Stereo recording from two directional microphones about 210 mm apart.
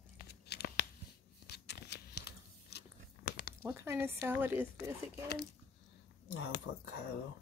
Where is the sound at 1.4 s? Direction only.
50° left (ahead or behind).